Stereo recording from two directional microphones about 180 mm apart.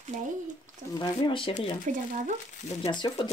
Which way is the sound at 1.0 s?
25° left (ahead or behind).